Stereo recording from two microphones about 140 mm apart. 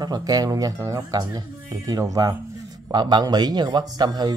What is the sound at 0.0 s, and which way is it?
A man's voice, 30° right (ahead or behind).